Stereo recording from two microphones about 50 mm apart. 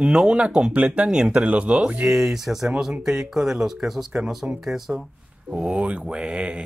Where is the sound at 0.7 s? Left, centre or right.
Right.